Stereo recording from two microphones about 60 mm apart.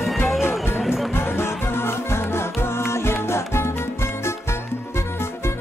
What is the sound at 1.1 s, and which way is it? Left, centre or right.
Music, left.